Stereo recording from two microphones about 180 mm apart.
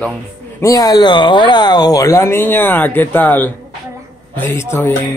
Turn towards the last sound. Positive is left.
turn(degrees=15)  # may be behind; listen again after turning